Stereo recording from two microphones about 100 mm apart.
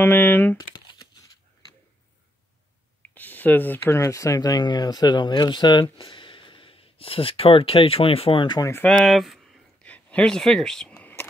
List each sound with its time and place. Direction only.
0.0 s speech: 20° left (ahead or behind)
0.6 s crumpling: 45° left (ahead or behind)
3.0 s speech: 20° left (ahead or behind); by 8.5 s 60° left (ahead or behind)
9.0 s speech: centre (ahead or behind)
9.8 s a sound: 15° left (ahead or behind)